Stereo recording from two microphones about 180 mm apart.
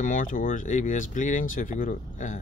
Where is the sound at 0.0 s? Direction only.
45° left (ahead or behind).